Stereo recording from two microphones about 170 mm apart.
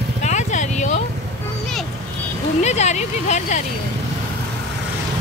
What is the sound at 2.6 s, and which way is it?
Speech, 40° left (ahead or behind).